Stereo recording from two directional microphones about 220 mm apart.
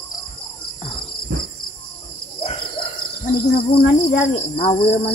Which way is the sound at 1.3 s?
50° right (ahead or behind).